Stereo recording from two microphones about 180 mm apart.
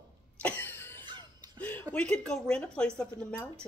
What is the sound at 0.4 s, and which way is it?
Cough, 10° left (ahead or behind).